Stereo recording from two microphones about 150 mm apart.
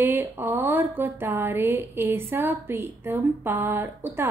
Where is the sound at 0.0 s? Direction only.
15° right (ahead or behind).